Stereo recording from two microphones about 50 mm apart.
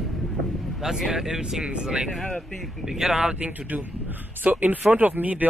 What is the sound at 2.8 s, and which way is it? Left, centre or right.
Speech, centre.